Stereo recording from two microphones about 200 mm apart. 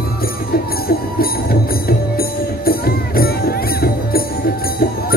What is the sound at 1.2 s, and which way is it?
Music, 50° left (ahead or behind).